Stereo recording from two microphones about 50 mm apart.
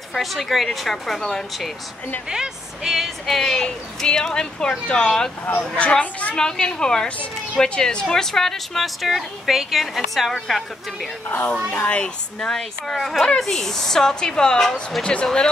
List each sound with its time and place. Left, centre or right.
0.1 s speech: centre
2.2 s speech: centre; by 6.3 s left
6.3 s speech: centre
11.2 s speech: left
11.7 s speech: left
12.4 s speech: centre
14.7 s speech: centre
15.2 s speech: centre